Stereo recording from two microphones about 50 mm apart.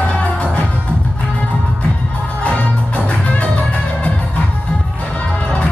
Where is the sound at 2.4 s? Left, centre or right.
Left.